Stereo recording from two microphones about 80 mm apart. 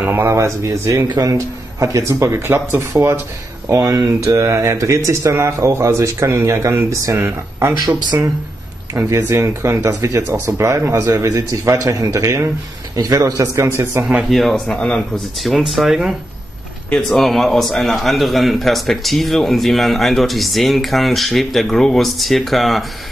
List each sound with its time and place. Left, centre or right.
0.0 s speech: right
1.0 s speech: right
3.8 s speech: right
9.1 s a man's voice: right
13.4 s speech: right
14.3 s a man's voice: centre